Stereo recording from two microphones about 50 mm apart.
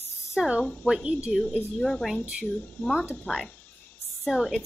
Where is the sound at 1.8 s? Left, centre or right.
Centre.